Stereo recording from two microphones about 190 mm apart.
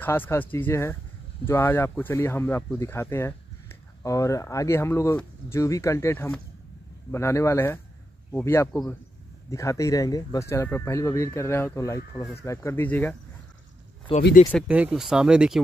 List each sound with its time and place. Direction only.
0.0 s speech: 10° left (ahead or behind)
14.1 s speech: 25° left (ahead or behind)
14.7 s speech: 5° right (ahead or behind)